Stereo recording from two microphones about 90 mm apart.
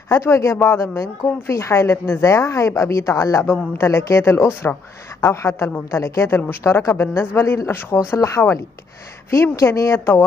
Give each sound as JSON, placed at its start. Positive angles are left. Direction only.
{"t": 0.1, "sound": "a woman's voice", "side_deg": 30}